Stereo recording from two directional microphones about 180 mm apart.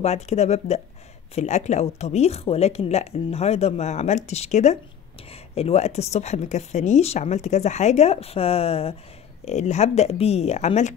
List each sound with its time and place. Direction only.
0.0 s speech: 40° left (ahead or behind)